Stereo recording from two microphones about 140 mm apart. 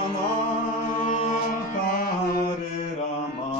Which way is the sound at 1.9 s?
90° left.